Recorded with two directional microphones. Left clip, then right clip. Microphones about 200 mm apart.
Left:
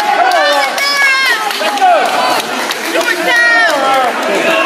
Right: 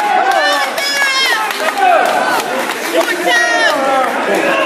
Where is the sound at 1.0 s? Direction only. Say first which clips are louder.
Left 3 dB; 25° right (ahead or behind).